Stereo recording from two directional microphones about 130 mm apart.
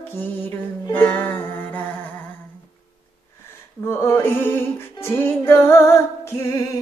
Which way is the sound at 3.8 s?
20° left (ahead or behind).